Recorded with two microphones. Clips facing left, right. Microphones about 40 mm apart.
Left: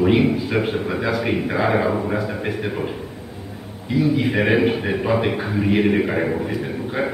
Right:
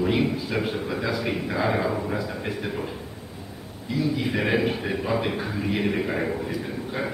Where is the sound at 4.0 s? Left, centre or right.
Left.